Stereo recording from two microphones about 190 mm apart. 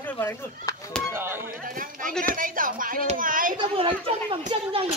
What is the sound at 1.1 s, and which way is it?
Speech, 10° right (ahead or behind).